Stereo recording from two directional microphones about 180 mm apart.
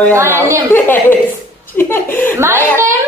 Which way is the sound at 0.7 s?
10° left (ahead or behind).